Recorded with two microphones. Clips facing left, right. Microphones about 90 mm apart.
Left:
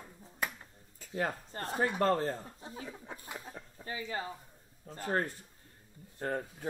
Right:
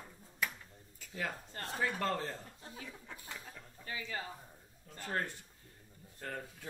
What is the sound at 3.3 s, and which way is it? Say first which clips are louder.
Speech: left 3 dB; 20° left (ahead or behind).